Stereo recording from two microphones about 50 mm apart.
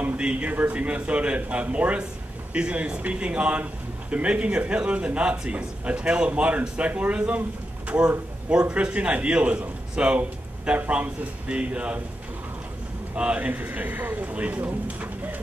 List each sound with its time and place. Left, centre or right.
0.2 s a man's voice: right
13.1 s a man's voice: right
14.9 s bird: right